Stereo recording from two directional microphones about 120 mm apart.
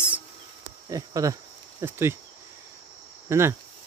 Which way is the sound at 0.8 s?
30° right (ahead or behind).